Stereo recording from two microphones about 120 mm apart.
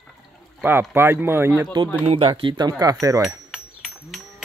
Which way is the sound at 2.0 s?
50° right (ahead or behind).